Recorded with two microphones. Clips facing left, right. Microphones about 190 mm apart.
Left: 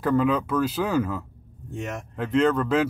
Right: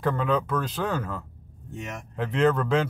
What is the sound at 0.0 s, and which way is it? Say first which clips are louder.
Speech: left 3 dB; 5° left (ahead or behind).